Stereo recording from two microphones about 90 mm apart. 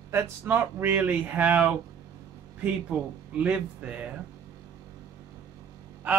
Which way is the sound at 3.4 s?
15° right (ahead or behind).